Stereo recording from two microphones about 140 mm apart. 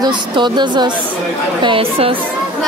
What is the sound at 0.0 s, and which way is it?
A woman's voice, 35° right (ahead or behind).